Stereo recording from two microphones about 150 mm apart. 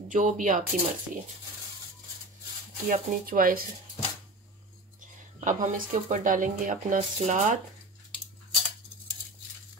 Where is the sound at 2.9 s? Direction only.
70° right (ahead or behind).